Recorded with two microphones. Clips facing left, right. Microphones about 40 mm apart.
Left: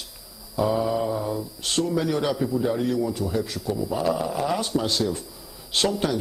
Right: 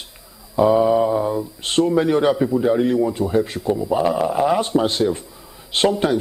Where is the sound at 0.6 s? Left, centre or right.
Right.